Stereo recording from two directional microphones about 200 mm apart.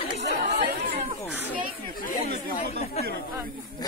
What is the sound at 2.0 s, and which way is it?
Chatter, 35° left (ahead or behind).